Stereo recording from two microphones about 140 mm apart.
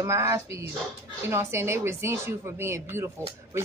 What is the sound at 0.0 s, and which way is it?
Speech, 20° right (ahead or behind).